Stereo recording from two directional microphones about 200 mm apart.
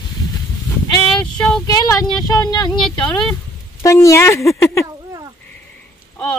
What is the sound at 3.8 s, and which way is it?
Speech, 15° left (ahead or behind).